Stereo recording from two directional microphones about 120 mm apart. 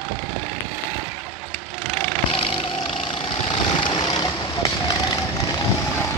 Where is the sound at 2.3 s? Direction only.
50° left (ahead or behind).